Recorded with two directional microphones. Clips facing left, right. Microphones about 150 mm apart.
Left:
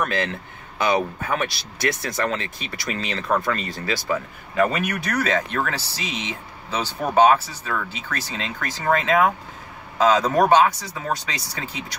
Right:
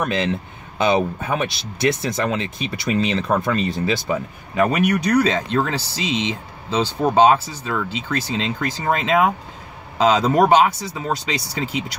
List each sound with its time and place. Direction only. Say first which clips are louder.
0.0 s speech: right 3 dB; 20° right (ahead or behind)